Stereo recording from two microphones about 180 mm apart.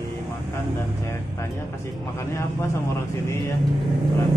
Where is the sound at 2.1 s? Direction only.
15° left (ahead or behind).